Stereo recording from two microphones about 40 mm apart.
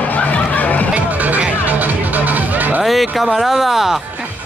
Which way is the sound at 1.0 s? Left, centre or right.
Right.